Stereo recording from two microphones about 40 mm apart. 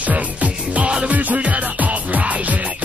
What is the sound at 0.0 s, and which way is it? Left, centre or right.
Music, right.